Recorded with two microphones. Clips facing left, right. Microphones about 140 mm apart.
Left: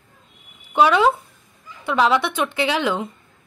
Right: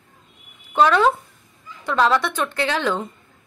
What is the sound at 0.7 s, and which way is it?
A woman's voice, 10° left (ahead or behind).